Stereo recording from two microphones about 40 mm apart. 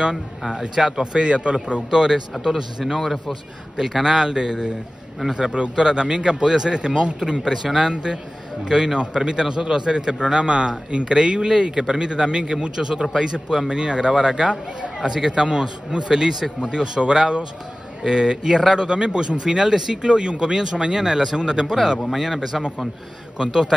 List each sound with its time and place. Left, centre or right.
0.5 s a man's voice: centre
2.3 s a man's voice: centre; by 7.2 s right
7.2 s a man's voice: centre
7.9 s a man's voice: centre
18.0 s a man's voice: centre
22.1 s speech: centre
23.3 s a man's voice: centre